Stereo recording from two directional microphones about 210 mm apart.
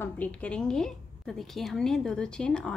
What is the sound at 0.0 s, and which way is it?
A woman's voice, 5° left (ahead or behind).